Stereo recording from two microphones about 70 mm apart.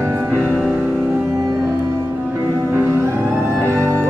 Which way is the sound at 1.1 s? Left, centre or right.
Right.